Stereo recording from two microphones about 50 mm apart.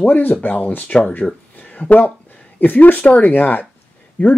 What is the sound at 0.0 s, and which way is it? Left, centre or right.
Speech, left.